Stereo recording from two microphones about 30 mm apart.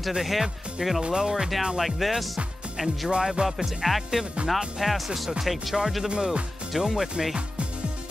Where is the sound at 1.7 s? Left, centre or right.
Centre.